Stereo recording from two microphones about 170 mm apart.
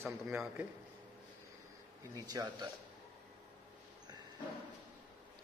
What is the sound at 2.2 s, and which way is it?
Speech, 20° right (ahead or behind).